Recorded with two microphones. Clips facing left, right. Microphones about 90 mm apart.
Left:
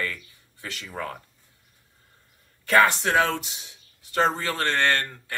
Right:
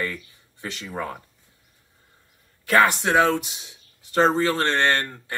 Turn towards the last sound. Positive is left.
turn(degrees=-25)  # may be behind; listen again after turning